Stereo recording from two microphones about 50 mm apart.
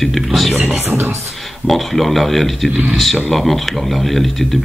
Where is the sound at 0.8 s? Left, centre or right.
Right.